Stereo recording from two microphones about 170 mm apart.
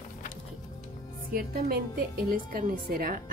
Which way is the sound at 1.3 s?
60° right (ahead or behind).